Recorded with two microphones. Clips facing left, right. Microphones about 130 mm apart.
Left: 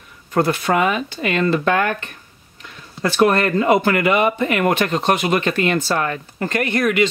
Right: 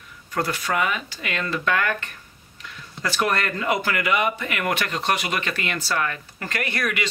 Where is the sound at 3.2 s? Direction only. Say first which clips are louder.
Left 9 dB; 35° left (ahead or behind).